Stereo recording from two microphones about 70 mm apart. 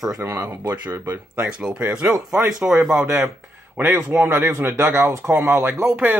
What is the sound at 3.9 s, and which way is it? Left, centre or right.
A man's voice, right.